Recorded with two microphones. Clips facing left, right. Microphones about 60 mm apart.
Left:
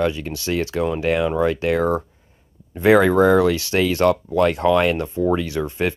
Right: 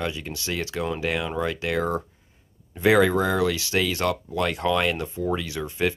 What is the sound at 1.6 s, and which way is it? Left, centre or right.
Speech, left.